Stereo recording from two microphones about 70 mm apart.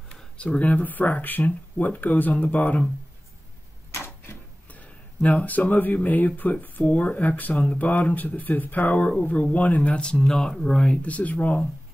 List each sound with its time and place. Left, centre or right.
0.1 s speech: centre
3.9 s a sound: left
4.7 s speech: left